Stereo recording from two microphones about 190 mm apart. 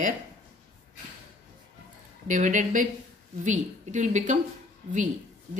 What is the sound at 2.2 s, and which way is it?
Speech, 40° right (ahead or behind).